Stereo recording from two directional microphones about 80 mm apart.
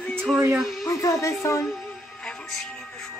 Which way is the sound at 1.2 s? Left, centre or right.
Left.